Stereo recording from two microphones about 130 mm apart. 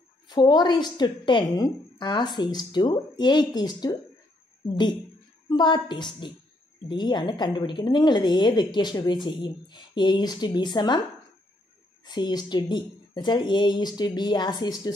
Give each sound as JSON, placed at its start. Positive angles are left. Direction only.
{"t": 0.3, "sound": "speech", "side_deg": 35}
{"t": 12.0, "sound": "speech", "side_deg": 35}